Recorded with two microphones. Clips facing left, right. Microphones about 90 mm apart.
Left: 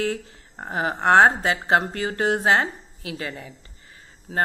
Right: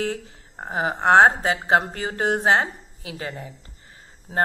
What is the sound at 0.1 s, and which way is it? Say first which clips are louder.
Speech: left 1 dB; 15° right (ahead or behind).